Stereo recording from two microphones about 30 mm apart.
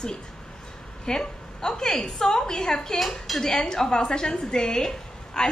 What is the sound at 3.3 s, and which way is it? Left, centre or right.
Speech, centre.